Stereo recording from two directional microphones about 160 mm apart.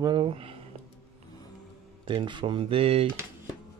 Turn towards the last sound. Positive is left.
turn(degrees=-35)  # may be behind; listen again after turning